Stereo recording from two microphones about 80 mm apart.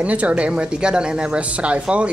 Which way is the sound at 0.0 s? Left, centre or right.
Centre.